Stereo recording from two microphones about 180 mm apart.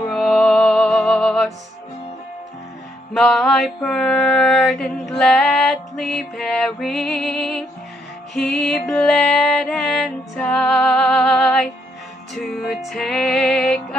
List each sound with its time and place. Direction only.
0.1 s music: centre (ahead or behind)
3.1 s mantra: centre (ahead or behind)
8.4 s music: centre (ahead or behind)